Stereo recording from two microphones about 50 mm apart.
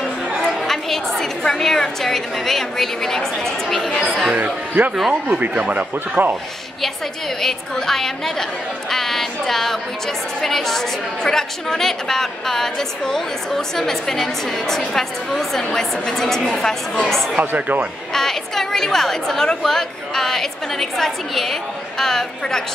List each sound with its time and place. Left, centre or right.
0.6 s a woman's voice: centre
4.4 s speech: right
7.4 s a woman's voice: centre
8.9 s a sound: centre
10.4 s a woman's voice: centre
17.6 s speech: right
18.1 s a woman's voice: centre